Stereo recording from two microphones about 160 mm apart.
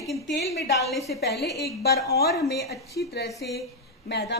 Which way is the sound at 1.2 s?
90° left.